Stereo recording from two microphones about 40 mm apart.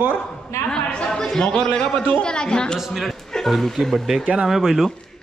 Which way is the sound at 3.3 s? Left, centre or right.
Centre.